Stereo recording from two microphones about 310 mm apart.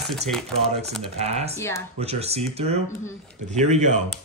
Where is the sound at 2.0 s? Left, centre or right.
Centre.